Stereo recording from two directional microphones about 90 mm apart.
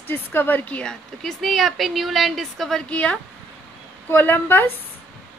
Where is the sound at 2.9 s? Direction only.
15° left (ahead or behind).